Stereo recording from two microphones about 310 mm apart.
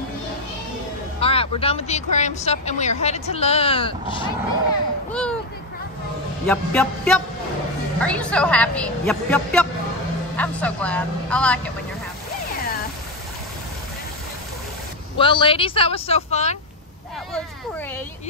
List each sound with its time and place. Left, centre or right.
1.2 s speech: centre
5.1 s a child's voice: centre
6.4 s a woman's voice: centre
15.1 s speech: centre